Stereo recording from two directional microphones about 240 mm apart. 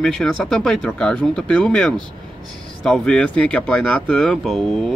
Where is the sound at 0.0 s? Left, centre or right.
Centre.